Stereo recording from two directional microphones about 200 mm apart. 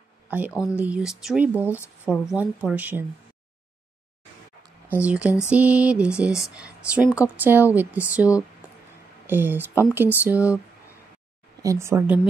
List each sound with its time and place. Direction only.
0.3 s speech: 10° right (ahead or behind)
4.6 s a sound: 10° right (ahead or behind)
5.5 s speech: 5° right (ahead or behind)
9.3 s speech: 10° right (ahead or behind)
11.6 s speech: 15° right (ahead or behind)